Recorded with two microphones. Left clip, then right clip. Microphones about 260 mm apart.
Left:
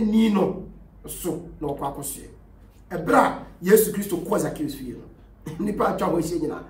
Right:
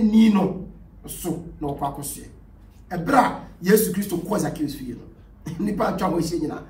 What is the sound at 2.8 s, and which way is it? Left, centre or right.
Speech, centre.